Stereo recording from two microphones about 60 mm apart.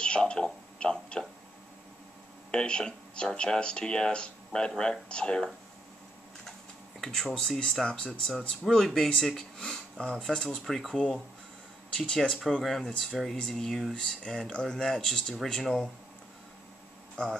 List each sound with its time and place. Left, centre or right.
0.0 s a sound: centre
2.5 s speech: centre
7.0 s speech: centre